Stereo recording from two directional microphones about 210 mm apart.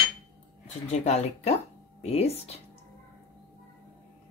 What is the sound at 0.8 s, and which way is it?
Speech, 35° left (ahead or behind).